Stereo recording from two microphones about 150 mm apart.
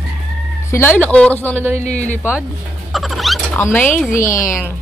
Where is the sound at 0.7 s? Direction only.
15° left (ahead or behind).